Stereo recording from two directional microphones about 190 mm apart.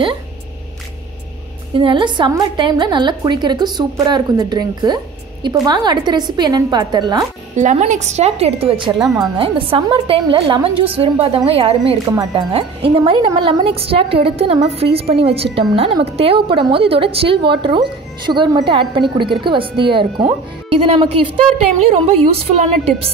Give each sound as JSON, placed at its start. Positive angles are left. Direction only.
{"t": 1.8, "sound": "a woman's voice", "side_deg": -25}
{"t": 7.5, "sound": "a woman's voice", "side_deg": -35}
{"t": 22.3, "sound": "a woman's voice", "side_deg": -30}